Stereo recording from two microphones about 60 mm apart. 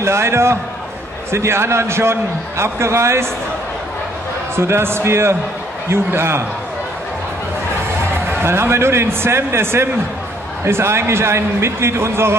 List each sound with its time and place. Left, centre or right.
0.0 s a man's voice: right
4.6 s a man's voice: right
8.3 s a man's voice: right